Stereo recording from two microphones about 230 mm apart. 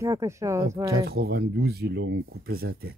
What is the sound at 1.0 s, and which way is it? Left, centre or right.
Speech, right.